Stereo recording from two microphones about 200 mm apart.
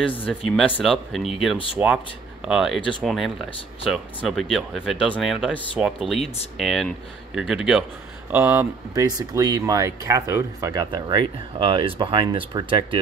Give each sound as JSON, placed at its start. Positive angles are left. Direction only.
{"t": 0.1, "sound": "speech", "side_deg": 10}
{"t": 1.8, "sound": "speech", "side_deg": -10}